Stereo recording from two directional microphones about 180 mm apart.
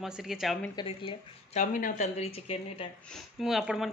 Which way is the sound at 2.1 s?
35° left (ahead or behind).